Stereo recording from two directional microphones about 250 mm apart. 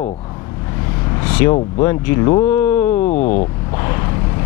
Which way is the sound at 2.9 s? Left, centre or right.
Left.